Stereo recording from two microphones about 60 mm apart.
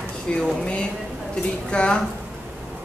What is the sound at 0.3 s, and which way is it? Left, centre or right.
Speech, centre.